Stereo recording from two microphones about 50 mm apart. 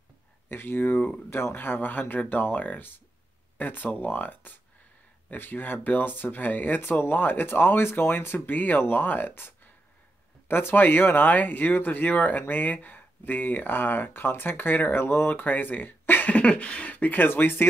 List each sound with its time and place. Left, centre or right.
0.5 s speech: left
10.5 s speech: left